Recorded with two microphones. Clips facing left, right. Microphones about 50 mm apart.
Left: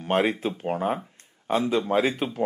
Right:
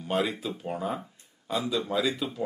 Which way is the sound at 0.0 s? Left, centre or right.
Left.